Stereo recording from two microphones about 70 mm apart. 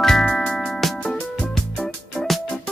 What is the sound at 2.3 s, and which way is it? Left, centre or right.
Music, centre.